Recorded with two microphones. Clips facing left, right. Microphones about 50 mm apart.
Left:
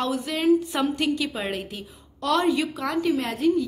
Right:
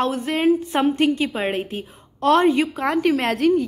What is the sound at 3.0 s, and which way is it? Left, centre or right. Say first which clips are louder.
Speech: right 3 dB; right.